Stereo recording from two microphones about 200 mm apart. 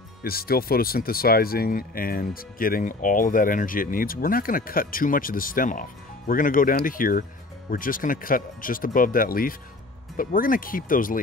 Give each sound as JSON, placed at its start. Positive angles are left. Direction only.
{"t": 0.2, "sound": "speech", "side_deg": 50}